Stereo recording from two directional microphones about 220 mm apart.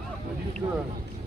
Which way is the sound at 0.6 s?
20° right (ahead or behind).